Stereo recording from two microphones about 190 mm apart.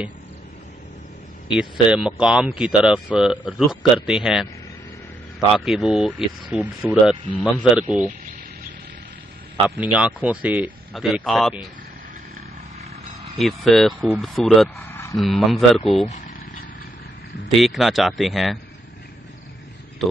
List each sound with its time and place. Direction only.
1.5 s speech: 5° right (ahead or behind)
5.7 s speech: centre (ahead or behind)
9.9 s speech: 5° right (ahead or behind)
13.4 s speech: centre (ahead or behind)
14.9 s a sound: 15° left (ahead or behind)
15.1 s speech: centre (ahead or behind)
17.6 s speech: centre (ahead or behind)